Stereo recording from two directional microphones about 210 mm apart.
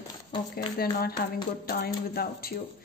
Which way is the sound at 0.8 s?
45° left (ahead or behind).